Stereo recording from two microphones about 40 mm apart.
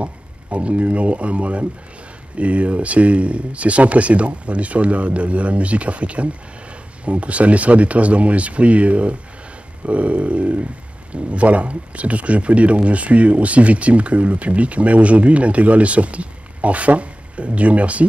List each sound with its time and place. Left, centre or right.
0.0 s speech: right